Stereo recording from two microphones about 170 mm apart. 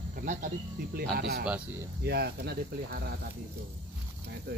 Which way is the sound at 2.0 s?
70° right (ahead or behind).